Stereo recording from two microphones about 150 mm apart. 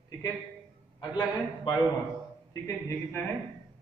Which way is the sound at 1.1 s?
30° left (ahead or behind).